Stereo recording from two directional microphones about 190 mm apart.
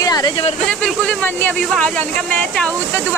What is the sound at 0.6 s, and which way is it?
Speech, 5° left (ahead or behind).